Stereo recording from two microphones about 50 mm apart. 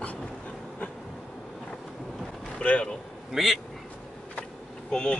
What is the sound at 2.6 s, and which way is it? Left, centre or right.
Speech, left.